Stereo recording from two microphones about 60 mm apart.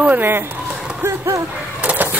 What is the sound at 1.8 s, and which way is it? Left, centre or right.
Vehicle, right.